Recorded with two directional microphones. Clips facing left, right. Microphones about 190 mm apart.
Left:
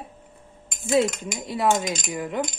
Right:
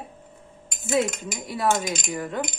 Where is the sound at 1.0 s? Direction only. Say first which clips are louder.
Left 2 dB; 25° left (ahead or behind).